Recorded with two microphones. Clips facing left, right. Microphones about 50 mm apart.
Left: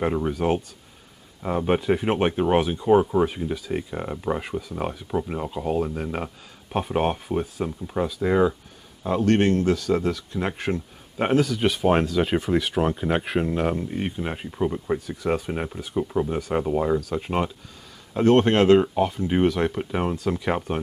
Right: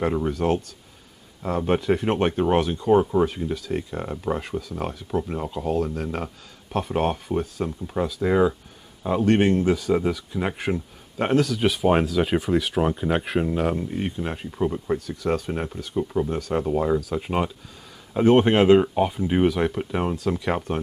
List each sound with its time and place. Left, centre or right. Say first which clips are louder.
0.0 s speech: even; centre